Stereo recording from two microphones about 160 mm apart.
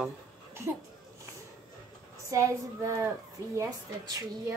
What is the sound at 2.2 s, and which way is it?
A woman's voice, 20° right (ahead or behind).